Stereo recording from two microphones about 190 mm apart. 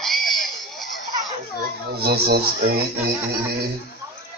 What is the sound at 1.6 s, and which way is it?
Speech, 55° right (ahead or behind).